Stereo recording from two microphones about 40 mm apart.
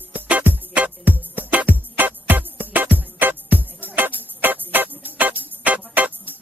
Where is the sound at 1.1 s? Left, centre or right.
Right.